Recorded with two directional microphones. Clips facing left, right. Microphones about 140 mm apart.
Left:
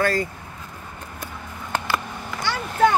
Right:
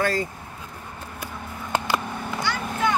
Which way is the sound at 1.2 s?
15° right (ahead or behind).